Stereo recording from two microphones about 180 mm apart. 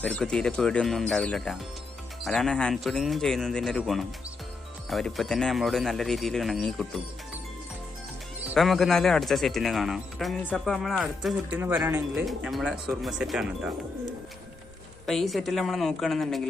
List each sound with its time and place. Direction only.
0.0 s speech: 5° left (ahead or behind)
8.5 s speech: centre (ahead or behind)
11.6 s speech: 10° right (ahead or behind)
12.3 s speech: centre (ahead or behind)
15.0 s speech: centre (ahead or behind)